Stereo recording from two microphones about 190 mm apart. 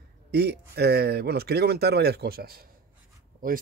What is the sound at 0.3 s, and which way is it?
Speech, 60° right (ahead or behind).